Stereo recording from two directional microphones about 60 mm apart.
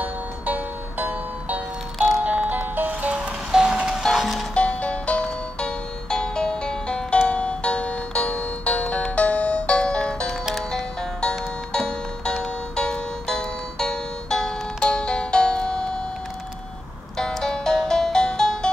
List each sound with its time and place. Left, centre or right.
0.0 s music: right
2.0 s music: centre
2.2 s music: right
4.0 s music: centre
4.6 s music: left
17.2 s music: centre